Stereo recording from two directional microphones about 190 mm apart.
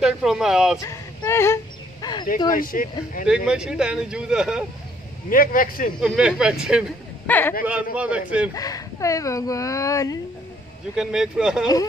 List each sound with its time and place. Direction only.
0.0 s speech: centre (ahead or behind)
0.7 s a sound: 15° left (ahead or behind)
2.5 s speech: 45° left (ahead or behind)
3.3 s speech: 5° right (ahead or behind)
5.3 s speech: 45° left (ahead or behind)
5.9 s speech: 5° right (ahead or behind)
7.2 s speech: 10° left (ahead or behind)
7.6 s a man's voice: 5° right (ahead or behind)
8.5 s speech: 20° left (ahead or behind)
11.0 s speech: 5° right (ahead or behind)